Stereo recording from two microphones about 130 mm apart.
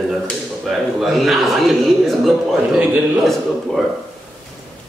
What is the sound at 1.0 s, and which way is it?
A man's voice, centre (ahead or behind).